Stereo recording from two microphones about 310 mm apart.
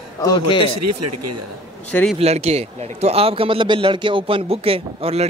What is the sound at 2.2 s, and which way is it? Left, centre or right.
A man's voice, centre.